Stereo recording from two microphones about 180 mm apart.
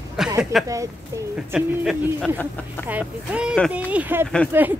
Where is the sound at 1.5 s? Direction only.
5° right (ahead or behind).